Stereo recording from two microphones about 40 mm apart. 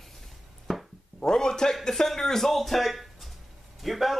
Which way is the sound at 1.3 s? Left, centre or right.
Centre.